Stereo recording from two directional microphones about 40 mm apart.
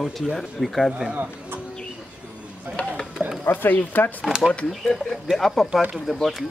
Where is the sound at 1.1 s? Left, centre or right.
Right.